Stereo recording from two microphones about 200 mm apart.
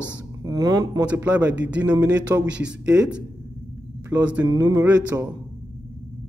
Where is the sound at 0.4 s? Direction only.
20° right (ahead or behind).